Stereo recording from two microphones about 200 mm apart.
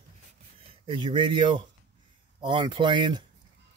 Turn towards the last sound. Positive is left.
turn(degrees=-20)  # may be behind; listen again after turning